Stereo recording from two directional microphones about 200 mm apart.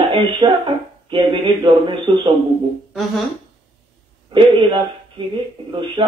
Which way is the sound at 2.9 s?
Centre (ahead or behind).